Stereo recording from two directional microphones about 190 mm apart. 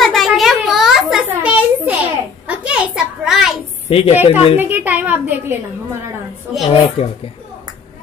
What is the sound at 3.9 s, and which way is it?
Speech, 30° left (ahead or behind).